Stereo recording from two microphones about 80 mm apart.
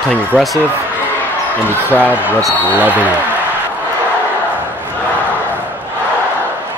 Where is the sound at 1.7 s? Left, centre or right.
Right.